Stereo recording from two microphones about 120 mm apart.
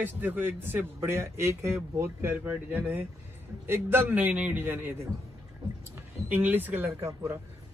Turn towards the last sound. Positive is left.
turn(degrees=-20)  # may be behind; listen again after turning